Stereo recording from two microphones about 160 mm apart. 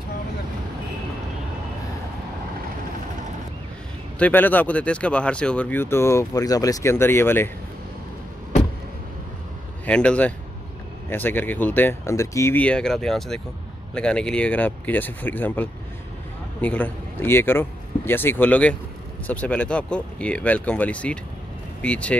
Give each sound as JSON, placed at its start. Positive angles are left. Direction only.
{"t": 4.2, "sound": "speech", "side_deg": 10}
{"t": 9.8, "sound": "speech", "side_deg": 5}